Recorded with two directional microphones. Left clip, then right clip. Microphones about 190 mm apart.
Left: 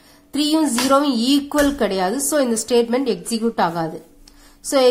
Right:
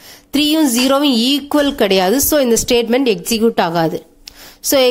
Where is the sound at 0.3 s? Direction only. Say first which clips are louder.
Right 5 dB; 30° right (ahead or behind).